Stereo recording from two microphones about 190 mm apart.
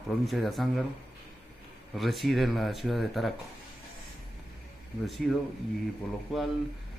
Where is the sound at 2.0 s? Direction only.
Centre (ahead or behind).